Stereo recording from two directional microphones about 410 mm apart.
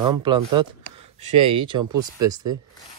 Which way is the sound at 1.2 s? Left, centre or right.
Right.